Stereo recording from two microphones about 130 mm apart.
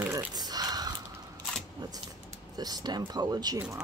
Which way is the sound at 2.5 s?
30° right (ahead or behind).